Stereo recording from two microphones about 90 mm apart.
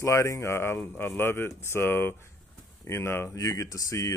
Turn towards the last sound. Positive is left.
turn(degrees=35)  # may be behind; listen again after turning